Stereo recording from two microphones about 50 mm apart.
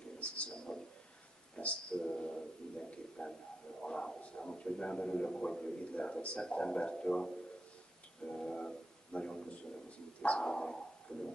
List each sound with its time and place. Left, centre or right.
0.7 s a sound: centre
2.0 s music: centre
3.8 s a sound: centre
4.4 s a man's voice: centre
8.2 s music: centre
9.5 s speech: left
10.4 s dog: centre